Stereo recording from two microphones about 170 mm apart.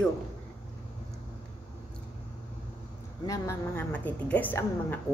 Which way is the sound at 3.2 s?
15° left (ahead or behind).